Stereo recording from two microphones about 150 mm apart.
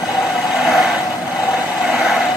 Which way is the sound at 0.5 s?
Centre (ahead or behind).